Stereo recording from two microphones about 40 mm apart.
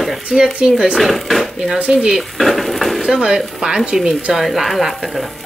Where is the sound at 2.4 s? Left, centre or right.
Centre.